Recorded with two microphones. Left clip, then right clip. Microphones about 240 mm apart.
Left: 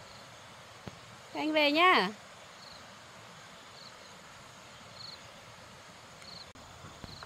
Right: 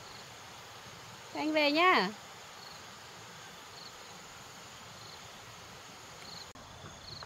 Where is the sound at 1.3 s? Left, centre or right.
Centre.